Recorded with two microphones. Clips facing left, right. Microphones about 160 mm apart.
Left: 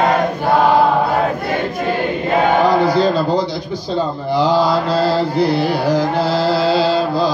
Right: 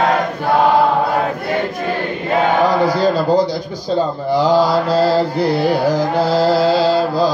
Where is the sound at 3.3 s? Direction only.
45° right (ahead or behind).